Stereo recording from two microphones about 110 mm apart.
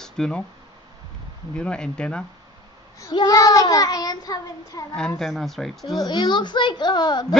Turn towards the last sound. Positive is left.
turn(degrees=40)  # may be behind; listen again after turning